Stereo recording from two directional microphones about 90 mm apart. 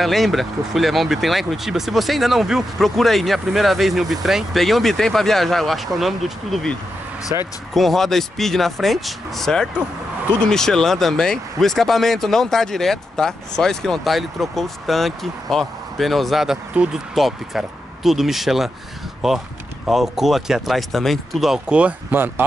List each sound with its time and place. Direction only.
0.0 s speech: centre (ahead or behind)
7.3 s speech: 35° right (ahead or behind)
7.7 s speech: centre (ahead or behind); by 22.3 s 20° right (ahead or behind)